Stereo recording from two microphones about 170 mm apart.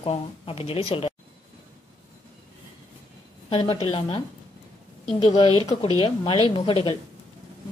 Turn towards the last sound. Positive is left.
turn(degrees=30)  # may be behind; listen again after turning